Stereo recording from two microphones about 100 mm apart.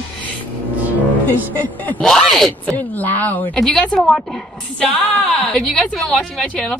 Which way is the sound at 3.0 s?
15° left (ahead or behind).